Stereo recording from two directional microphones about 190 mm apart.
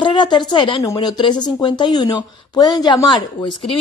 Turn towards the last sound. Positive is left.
turn(degrees=25)  # may be behind; listen again after turning